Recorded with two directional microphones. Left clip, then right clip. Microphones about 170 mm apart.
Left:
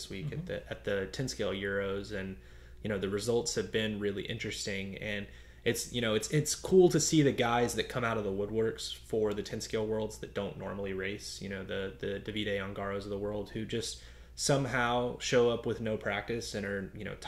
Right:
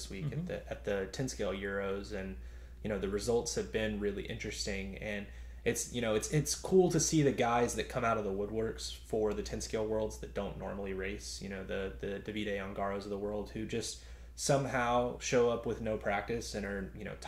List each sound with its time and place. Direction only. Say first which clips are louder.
0.1 s speech: left 1 dB; 15° left (ahead or behind)